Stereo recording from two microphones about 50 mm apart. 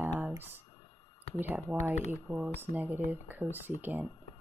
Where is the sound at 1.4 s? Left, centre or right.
Right.